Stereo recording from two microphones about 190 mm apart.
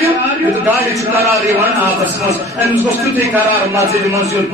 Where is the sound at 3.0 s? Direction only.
15° right (ahead or behind).